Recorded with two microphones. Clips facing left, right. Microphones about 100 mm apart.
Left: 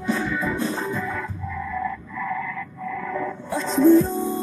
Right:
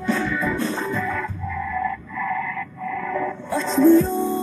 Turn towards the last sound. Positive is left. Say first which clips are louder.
# right 2 dB
turn(degrees=10)  # may be behind; listen again after turning